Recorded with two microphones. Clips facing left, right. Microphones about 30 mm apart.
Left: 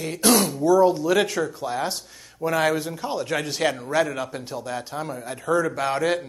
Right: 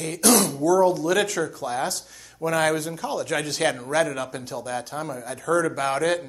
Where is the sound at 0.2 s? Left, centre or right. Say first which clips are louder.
Left 1 dB; left.